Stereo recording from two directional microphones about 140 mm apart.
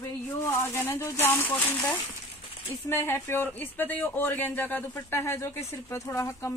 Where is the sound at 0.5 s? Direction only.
15° left (ahead or behind).